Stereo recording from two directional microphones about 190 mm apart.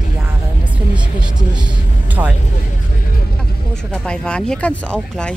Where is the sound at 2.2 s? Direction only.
10° right (ahead or behind).